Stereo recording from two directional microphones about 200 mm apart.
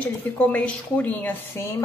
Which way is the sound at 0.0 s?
10° left (ahead or behind).